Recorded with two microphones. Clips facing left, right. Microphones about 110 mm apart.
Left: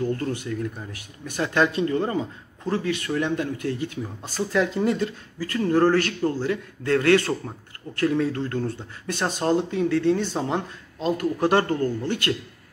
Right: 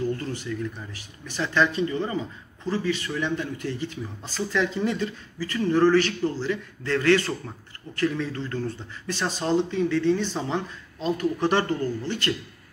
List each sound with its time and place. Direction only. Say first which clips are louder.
0.1 s speech: left 3 dB; 50° left (ahead or behind)